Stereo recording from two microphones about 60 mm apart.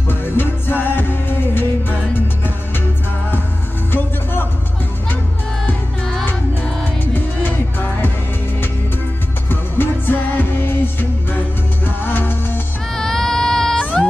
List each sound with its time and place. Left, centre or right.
0.1 s music: left
3.9 s music: left
7.2 s music: left
9.5 s music: left
12.9 s baby cry: centre